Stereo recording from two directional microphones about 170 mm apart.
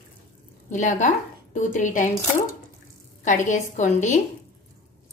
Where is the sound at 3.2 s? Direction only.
45° left (ahead or behind).